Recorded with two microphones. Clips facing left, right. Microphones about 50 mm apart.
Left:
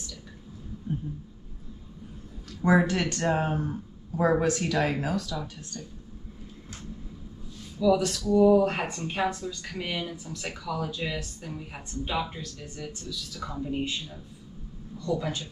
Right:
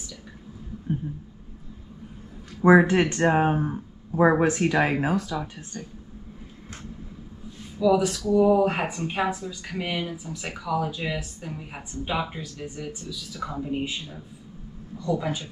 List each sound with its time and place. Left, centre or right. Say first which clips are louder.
0.9 s a sound: right 4 dB; right
2.6 s speech: right 6 dB; right
7.8 s speech: right 2 dB; centre